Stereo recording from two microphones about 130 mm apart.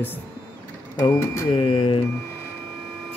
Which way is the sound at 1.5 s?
40° left (ahead or behind).